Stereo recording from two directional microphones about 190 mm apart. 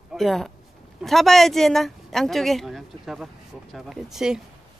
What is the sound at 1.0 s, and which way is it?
Speech, centre (ahead or behind).